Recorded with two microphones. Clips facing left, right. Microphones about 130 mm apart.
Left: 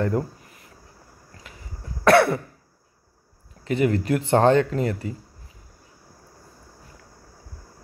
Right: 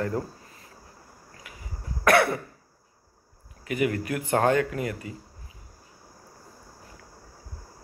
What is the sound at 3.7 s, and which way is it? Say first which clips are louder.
Speech: left 5 dB; 30° left (ahead or behind).